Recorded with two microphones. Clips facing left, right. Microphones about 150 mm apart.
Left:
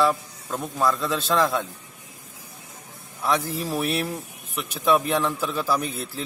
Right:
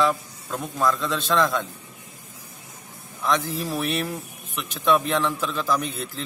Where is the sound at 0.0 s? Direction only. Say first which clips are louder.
Left 1 dB; 5° left (ahead or behind).